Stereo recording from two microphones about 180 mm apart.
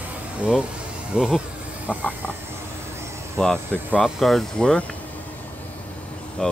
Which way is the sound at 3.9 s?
Centre (ahead or behind).